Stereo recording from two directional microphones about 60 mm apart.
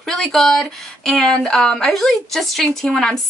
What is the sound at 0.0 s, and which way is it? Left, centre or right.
Speech, centre.